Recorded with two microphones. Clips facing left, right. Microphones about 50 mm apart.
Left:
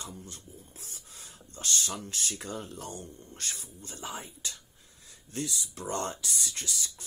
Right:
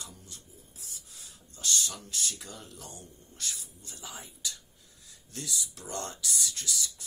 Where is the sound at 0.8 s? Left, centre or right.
Left.